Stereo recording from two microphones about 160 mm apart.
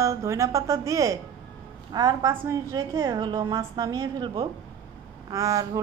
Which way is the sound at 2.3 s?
15° right (ahead or behind).